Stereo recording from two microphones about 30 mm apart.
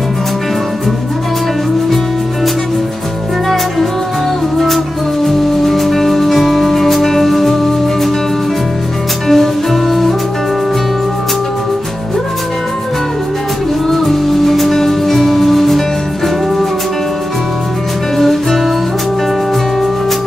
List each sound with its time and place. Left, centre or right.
5.2 s music: centre
9.3 s music: centre
13.8 s music: centre
18.1 s music: centre